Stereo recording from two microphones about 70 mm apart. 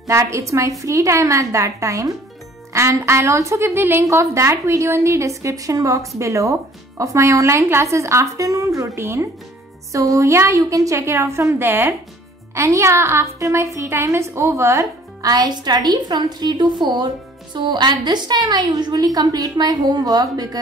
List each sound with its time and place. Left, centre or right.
0.0 s a woman's voice: right
2.7 s a woman's voice: right
12.5 s a woman's voice: right
15.2 s a woman's voice: right